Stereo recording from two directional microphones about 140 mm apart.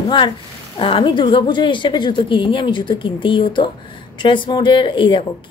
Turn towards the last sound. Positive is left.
turn(degrees=35)  # may be behind; listen again after turning